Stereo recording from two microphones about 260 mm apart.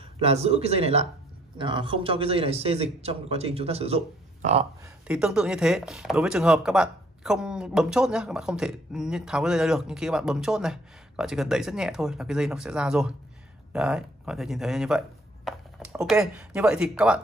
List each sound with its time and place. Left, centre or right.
0.2 s a man's voice: right
5.0 s speech: centre